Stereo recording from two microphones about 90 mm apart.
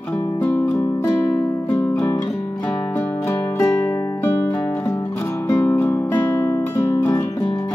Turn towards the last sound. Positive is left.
turn(degrees=25)  # may be behind; listen again after turning